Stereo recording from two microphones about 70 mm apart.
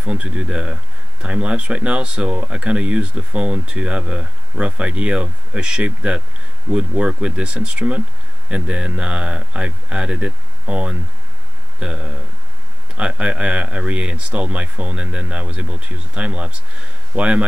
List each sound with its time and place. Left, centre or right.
0.0 s speech: centre